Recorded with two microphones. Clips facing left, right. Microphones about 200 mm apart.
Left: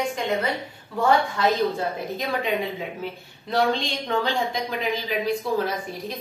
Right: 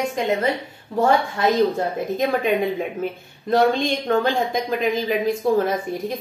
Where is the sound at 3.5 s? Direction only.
50° right (ahead or behind).